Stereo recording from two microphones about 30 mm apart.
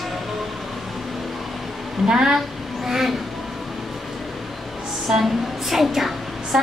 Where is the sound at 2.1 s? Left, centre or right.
Right.